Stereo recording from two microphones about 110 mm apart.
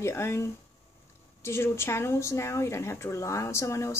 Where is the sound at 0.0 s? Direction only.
25° left (ahead or behind).